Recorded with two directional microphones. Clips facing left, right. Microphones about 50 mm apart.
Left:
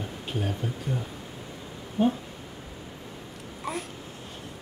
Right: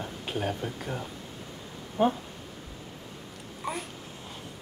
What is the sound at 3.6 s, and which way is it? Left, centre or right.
Babbling, centre.